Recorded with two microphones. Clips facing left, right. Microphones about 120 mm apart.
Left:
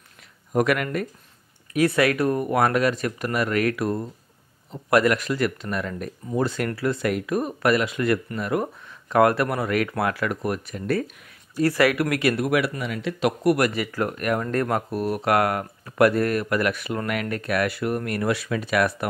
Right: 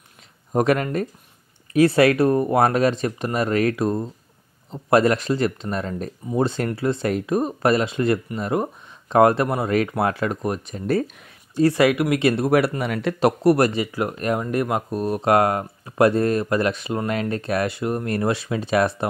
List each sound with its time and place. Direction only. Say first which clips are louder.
0.5 s speech: right 2 dB; 30° right (ahead or behind); by 13.1 s 50° right (ahead or behind)
13.2 s speech: right 4 dB; 30° right (ahead or behind)